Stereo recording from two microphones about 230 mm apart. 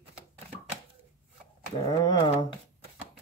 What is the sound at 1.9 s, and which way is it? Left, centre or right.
Speech, centre.